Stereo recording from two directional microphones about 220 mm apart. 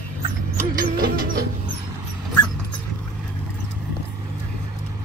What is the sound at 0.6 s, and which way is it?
Music, 40° right (ahead or behind).